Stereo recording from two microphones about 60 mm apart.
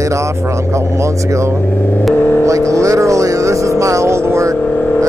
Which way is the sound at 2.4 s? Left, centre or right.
Right.